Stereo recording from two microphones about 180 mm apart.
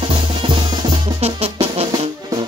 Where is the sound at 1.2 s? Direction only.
35° right (ahead or behind).